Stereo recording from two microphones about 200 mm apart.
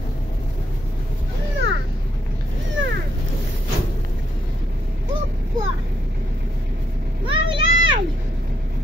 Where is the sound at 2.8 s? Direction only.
75° right (ahead or behind).